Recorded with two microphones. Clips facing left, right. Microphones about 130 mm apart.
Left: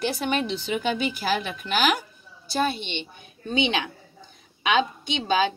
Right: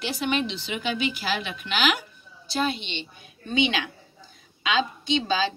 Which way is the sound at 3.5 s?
25° left (ahead or behind).